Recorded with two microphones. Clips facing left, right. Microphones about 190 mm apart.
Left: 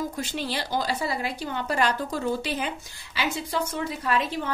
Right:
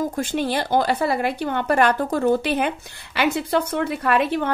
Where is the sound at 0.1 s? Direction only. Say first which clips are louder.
Right 7 dB; 50° right (ahead or behind).